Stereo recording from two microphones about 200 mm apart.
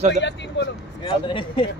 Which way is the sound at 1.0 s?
25° left (ahead or behind).